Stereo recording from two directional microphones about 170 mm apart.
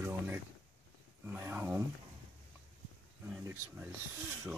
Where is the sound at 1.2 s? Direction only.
15° right (ahead or behind).